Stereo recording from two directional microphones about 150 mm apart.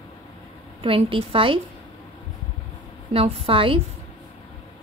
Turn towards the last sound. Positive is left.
turn(degrees=-40)  # may be behind; listen again after turning